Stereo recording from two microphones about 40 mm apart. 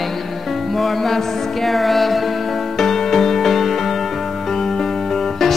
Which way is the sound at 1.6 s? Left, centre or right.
Centre.